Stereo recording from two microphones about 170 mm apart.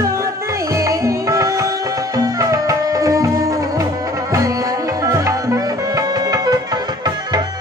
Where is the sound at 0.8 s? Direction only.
20° right (ahead or behind).